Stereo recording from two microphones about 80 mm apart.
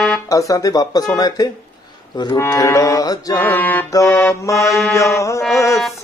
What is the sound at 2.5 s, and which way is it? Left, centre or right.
Speech, left.